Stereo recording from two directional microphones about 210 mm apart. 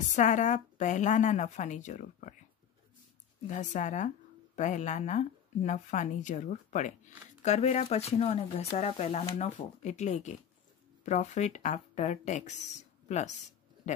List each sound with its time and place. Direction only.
0.1 s speech: 35° left (ahead or behind)
3.4 s speech: 35° left (ahead or behind)
13.9 s a sound: 35° left (ahead or behind)